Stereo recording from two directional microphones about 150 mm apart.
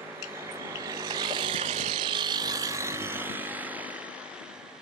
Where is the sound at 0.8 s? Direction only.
25° right (ahead or behind); by 4.2 s 10° right (ahead or behind).